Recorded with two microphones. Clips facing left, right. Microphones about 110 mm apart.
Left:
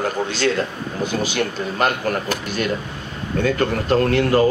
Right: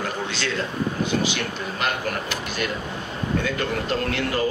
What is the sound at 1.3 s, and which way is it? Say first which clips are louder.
Speech: left 6 dB; 45° left (ahead or behind).